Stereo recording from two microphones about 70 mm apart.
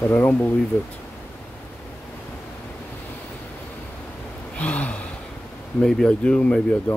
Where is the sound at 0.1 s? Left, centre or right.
Centre.